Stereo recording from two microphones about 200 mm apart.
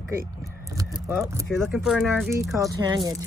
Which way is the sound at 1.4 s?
Centre (ahead or behind).